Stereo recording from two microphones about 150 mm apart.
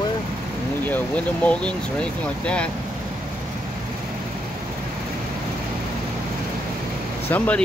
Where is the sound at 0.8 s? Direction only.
10° left (ahead or behind).